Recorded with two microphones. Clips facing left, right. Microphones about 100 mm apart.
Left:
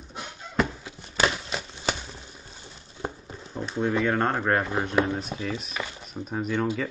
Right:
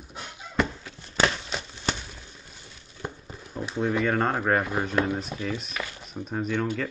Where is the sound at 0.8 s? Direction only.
5° left (ahead or behind).